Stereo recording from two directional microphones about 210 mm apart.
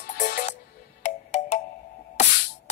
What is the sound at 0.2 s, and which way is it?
Music, 35° left (ahead or behind).